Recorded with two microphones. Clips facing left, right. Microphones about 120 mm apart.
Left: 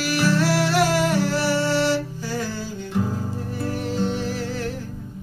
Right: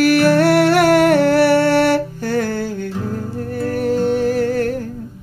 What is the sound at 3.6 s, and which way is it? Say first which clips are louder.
Music: right 8 dB; 50° right (ahead or behind).